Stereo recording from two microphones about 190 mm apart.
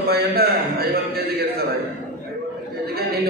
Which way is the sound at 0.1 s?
55° right (ahead or behind).